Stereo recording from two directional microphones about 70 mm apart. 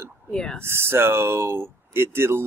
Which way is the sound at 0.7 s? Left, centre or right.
Right.